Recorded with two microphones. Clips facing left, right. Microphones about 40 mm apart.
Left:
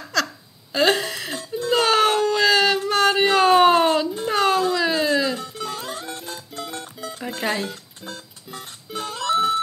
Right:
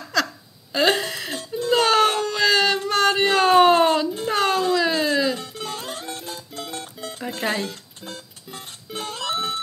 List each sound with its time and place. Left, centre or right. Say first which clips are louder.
0.1 s hiccup: even; centre
0.7 s a sound: left 1 dB; centre
4.2 s music: left 1 dB; centre
9.2 s music: left 7 dB; centre